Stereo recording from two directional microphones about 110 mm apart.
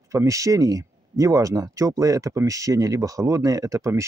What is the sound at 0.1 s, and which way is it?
Speech, 30° right (ahead or behind).